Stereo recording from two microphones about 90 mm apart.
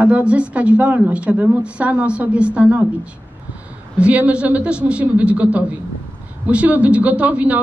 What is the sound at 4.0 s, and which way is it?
A woman's voice, 15° right (ahead or behind).